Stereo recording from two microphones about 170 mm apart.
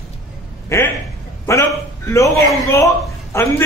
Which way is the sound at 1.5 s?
15° left (ahead or behind).